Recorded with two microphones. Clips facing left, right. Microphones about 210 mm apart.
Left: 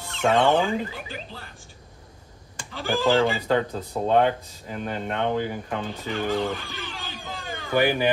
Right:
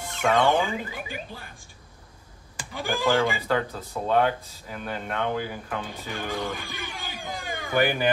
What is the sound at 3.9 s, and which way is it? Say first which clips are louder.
Speech: left 2 dB; 35° left (ahead or behind).